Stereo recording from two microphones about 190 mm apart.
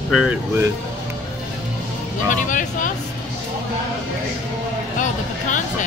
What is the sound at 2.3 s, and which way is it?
Vehicle, 45° left (ahead or behind).